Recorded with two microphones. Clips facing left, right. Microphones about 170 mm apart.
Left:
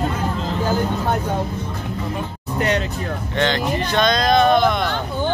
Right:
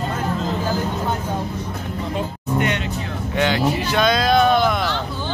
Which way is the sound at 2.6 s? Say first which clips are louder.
Left 2 dB; 35° left (ahead or behind).